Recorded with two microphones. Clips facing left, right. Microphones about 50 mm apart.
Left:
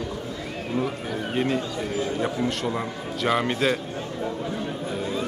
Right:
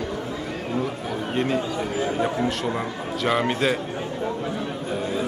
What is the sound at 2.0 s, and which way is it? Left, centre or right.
Speech, right.